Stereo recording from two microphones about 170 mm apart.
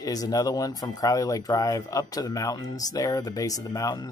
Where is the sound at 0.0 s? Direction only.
20° left (ahead or behind).